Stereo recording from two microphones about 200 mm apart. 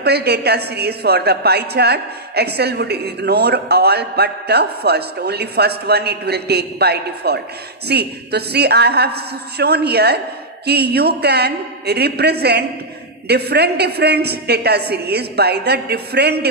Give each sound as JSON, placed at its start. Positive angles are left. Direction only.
{"t": 0.0, "sound": "a woman's voice", "side_deg": -55}